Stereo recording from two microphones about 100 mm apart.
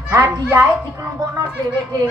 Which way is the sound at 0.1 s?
30° right (ahead or behind).